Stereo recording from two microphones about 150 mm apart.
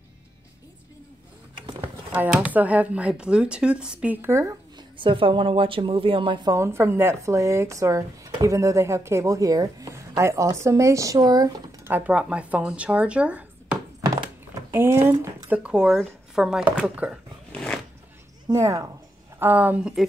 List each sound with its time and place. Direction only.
2.1 s speech: 10° right (ahead or behind)
4.9 s speech: 35° right (ahead or behind)
6.5 s speech: 15° right (ahead or behind)
11.9 s speech: 10° right (ahead or behind)
17.5 s a sound: 5° left (ahead or behind)
18.5 s speech: 20° right (ahead or behind)
19.4 s speech: 10° right (ahead or behind)